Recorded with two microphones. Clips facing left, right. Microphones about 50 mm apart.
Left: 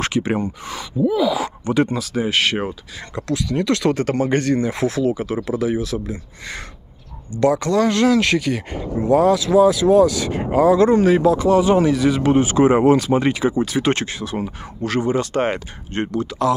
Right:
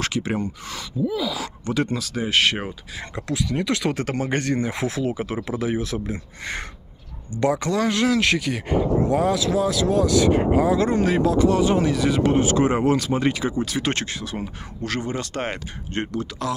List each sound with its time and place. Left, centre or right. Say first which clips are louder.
0.0 s speech: left 4 dB; left
2.0 s speech: left 2 dB; centre
3.2 s speech: left 4 dB; centre; by 6.6 s right
7.3 s speech: left 5 dB; centre